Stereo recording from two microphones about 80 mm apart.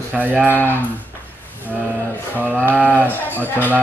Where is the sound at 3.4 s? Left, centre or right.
Left.